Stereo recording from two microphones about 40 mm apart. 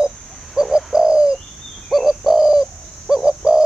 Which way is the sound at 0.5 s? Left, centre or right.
Centre.